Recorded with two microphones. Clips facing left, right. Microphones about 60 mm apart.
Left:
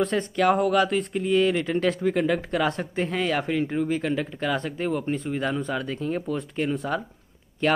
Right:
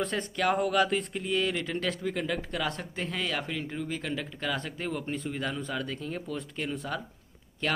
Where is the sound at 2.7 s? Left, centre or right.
Left.